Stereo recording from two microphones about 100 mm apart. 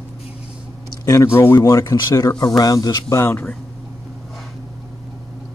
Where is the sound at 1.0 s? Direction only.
30° left (ahead or behind).